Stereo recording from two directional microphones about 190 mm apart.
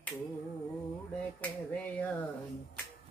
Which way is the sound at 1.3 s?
10° left (ahead or behind).